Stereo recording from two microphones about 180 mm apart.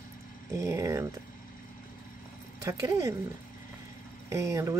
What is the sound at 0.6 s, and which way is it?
Speech, 15° right (ahead or behind).